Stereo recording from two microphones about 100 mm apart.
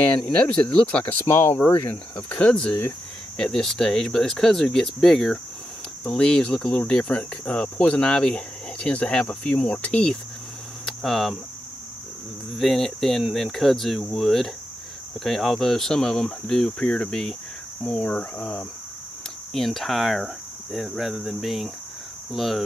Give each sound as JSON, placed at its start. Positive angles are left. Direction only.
{"t": 0.0, "sound": "cricket", "side_deg": 10}
{"t": 1.2, "sound": "speech", "side_deg": 30}
{"t": 1.9, "sound": "cricket", "side_deg": 15}
{"t": 3.3, "sound": "speech", "side_deg": 5}
{"t": 6.0, "sound": "cricket", "side_deg": 10}
{"t": 12.5, "sound": "speech", "side_deg": 0}
{"t": 17.8, "sound": "cricket", "side_deg": 10}
{"t": 19.5, "sound": "speech", "side_deg": 0}